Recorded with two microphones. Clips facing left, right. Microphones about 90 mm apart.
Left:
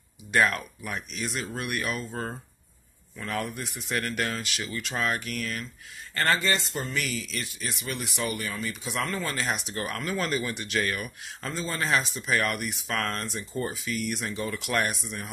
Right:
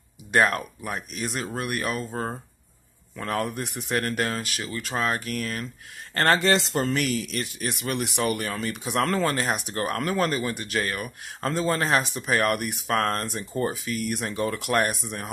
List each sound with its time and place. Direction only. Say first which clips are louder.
0.5 s speech: right 3 dB; 35° right (ahead or behind)
3.2 s speech: right 4 dB; 45° right (ahead or behind)
3.9 s speech: right 3 dB; 35° right (ahead or behind)
6.1 s speech: right 5 dB; 55° right (ahead or behind)
10.2 s speech: right 4 dB; 35° right (ahead or behind)
11.4 s speech: right 6 dB; 55° right (ahead or behind)
12.3 s speech: right 4 dB; 45° right (ahead or behind)